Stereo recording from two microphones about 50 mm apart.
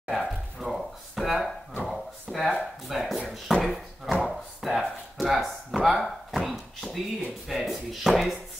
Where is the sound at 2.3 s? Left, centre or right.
Centre.